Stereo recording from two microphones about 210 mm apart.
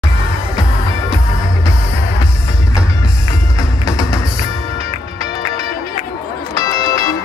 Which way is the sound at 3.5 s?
15° left (ahead or behind).